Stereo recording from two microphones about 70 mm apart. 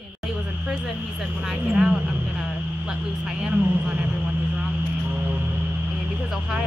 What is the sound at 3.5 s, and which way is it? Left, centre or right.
Speech, centre.